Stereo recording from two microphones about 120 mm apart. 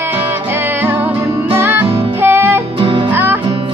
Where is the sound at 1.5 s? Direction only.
15° right (ahead or behind).